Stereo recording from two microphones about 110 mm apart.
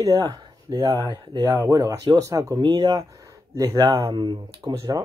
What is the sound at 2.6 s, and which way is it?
Speech, 40° right (ahead or behind).